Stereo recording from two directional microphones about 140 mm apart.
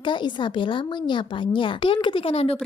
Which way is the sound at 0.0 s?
35° left (ahead or behind).